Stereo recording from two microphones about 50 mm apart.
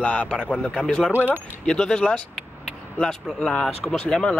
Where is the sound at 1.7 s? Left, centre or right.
Centre.